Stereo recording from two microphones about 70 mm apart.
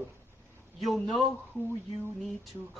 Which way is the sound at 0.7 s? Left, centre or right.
Centre.